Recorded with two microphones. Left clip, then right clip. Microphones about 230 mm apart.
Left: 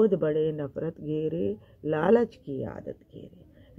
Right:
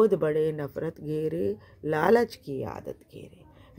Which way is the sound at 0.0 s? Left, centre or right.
Right.